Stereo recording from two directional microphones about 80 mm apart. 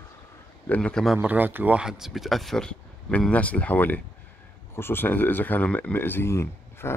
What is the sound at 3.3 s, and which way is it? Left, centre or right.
Speech, centre.